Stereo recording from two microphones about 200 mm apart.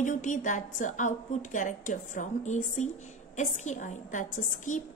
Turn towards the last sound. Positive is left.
turn(degrees=40)  # may be behind; listen again after turning